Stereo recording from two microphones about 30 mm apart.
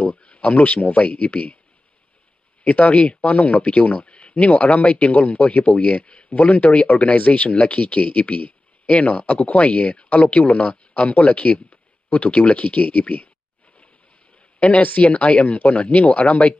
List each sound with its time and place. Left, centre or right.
0.0 s a sound: left
0.8 s speech: left
2.6 s speech: left
14.6 s speech: left